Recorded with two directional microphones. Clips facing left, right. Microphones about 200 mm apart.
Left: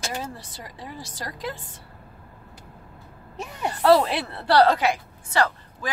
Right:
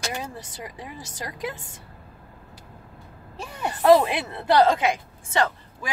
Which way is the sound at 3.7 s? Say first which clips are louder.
Right 1 dB; 15° right (ahead or behind).